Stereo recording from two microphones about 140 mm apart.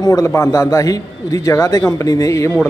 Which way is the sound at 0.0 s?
25° left (ahead or behind).